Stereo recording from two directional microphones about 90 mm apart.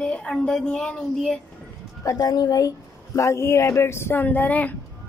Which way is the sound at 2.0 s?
45° left (ahead or behind).